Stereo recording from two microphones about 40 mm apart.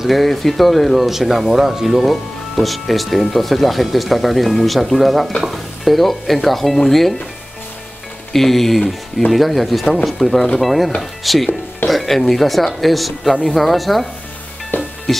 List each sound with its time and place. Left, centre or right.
0.0 s speech: centre
8.3 s speech: centre
14.7 s music: left
15.1 s speech: centre